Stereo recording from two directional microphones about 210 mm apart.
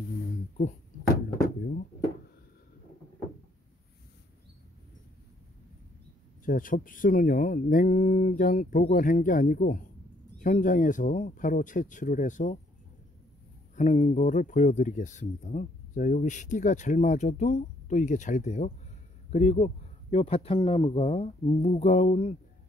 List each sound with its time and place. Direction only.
6.4 s speech: 40° left (ahead or behind)
13.7 s speech: 30° left (ahead or behind)